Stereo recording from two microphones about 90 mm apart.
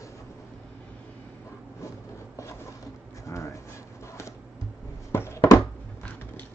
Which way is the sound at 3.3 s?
35° left (ahead or behind).